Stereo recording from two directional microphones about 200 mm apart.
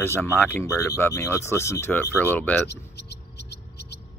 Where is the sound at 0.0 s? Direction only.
10° left (ahead or behind).